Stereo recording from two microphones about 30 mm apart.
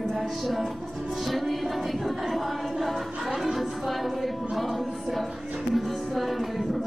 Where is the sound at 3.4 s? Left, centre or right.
Centre.